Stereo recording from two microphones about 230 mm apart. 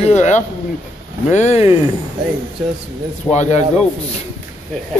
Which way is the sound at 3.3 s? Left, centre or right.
Left.